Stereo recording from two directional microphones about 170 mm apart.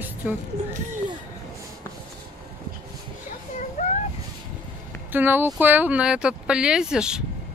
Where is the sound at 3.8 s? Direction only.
45° left (ahead or behind).